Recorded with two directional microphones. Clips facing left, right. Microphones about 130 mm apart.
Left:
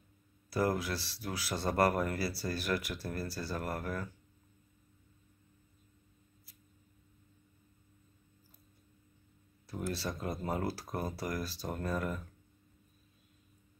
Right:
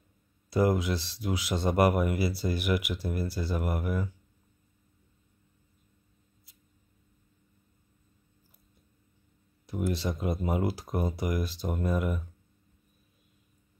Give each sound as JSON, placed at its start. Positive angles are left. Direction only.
{"t": 0.5, "sound": "speech", "side_deg": -20}
{"t": 9.7, "sound": "speech", "side_deg": -15}